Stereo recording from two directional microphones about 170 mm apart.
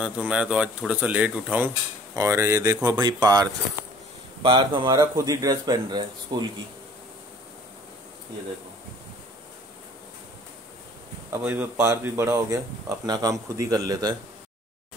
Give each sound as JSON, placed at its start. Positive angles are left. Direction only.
{"t": 0.0, "sound": "a man's voice", "side_deg": -5}
{"t": 11.2, "sound": "speech", "side_deg": -10}